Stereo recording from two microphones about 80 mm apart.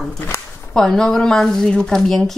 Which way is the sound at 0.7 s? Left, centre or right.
Centre.